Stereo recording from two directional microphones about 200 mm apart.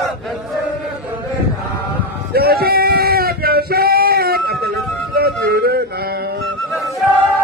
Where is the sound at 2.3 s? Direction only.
50° right (ahead or behind).